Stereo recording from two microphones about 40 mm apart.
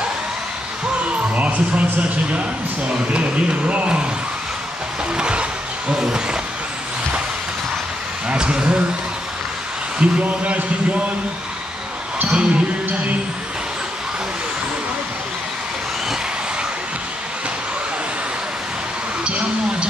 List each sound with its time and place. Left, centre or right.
1.3 s speech: right
3.6 s speech: right
5.1 s music: right
5.9 s speech: right
8.3 s speech: right
9.9 s speech: right
12.3 s speech: right
19.2 s a sound: right